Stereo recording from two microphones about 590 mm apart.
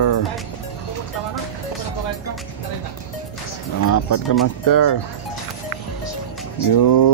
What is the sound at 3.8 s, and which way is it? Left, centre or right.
Speech, left.